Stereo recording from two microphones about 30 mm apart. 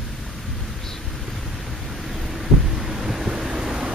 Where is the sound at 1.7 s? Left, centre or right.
Centre.